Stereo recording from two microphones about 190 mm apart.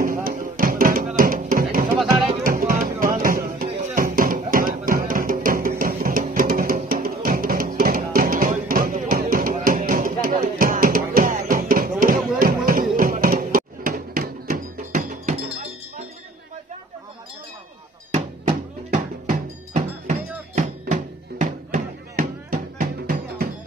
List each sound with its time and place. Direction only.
0.0 s music: 45° right (ahead or behind)
3.2 s a sound: 50° right (ahead or behind)
3.9 s music: 50° right (ahead or behind)
12.4 s a sound: 50° right (ahead or behind)
12.9 s music: 45° right (ahead or behind)
18.1 s music: 35° right (ahead or behind); by 23.5 s 55° right (ahead or behind)